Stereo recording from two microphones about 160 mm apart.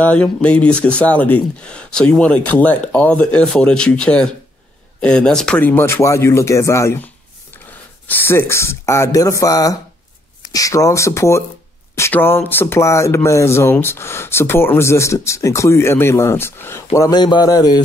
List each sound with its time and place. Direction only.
0.0 s speech: 10° left (ahead or behind)
8.1 s speech: 15° left (ahead or behind)